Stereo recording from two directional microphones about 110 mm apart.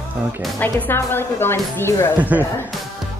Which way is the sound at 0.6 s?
15° left (ahead or behind).